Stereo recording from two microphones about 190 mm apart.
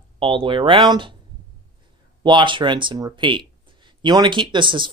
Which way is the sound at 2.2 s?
25° right (ahead or behind).